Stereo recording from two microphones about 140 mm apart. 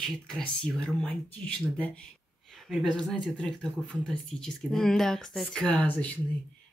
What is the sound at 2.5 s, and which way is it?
Speech, centre (ahead or behind).